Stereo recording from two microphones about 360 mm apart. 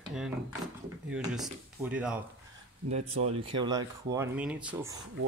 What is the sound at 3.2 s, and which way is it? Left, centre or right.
Speech, centre.